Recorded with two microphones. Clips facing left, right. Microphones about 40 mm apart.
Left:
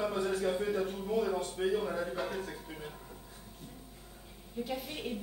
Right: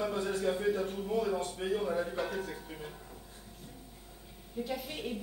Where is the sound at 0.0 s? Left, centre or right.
Left.